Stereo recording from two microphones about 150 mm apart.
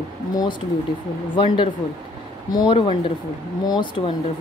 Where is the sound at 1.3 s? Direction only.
35° left (ahead or behind).